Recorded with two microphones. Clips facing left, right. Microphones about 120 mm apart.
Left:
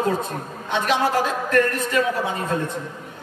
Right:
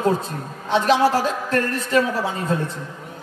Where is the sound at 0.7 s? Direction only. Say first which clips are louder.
Right 4 dB; 30° right (ahead or behind).